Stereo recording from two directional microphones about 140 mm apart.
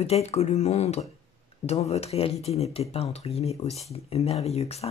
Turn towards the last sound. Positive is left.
turn(degrees=50)  # may be behind; listen again after turning